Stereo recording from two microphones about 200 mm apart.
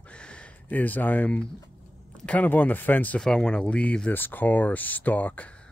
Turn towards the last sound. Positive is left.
turn(degrees=10)  # may be behind; listen again after turning